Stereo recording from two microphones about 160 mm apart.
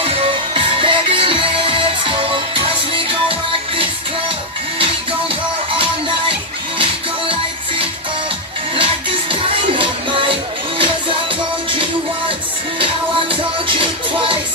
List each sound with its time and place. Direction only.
0.0 s music: 35° right (ahead or behind)
5.7 s music: 35° right (ahead or behind)
8.7 s music: 35° right (ahead or behind)
12.7 s music: 35° right (ahead or behind)